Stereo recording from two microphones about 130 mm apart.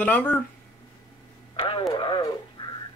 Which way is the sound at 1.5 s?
40° left (ahead or behind).